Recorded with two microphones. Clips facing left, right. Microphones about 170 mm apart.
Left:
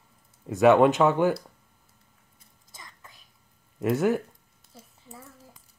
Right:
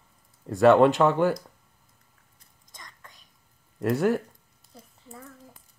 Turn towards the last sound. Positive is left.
turn(degrees=5)  # may be behind; listen again after turning